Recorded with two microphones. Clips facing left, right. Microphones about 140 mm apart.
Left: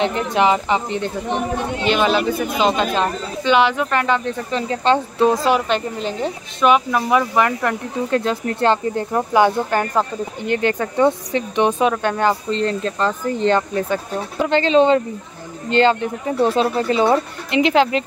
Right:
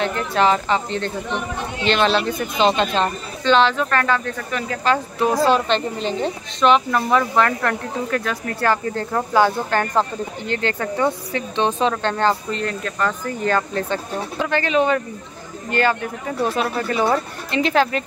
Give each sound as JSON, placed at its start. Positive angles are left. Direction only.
{"t": 0.0, "sound": "speech", "side_deg": 20}
{"t": 8.1, "sound": "speech", "side_deg": 30}
{"t": 12.4, "sound": "speech", "side_deg": 30}